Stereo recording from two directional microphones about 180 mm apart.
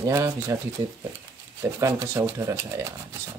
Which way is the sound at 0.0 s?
15° right (ahead or behind).